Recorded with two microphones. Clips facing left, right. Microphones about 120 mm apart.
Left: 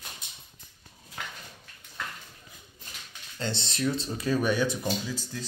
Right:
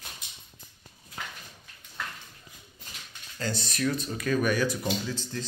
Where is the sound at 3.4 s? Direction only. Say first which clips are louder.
Even; 25° left (ahead or behind).